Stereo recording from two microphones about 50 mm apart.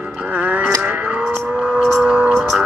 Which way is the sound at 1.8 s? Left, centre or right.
Centre.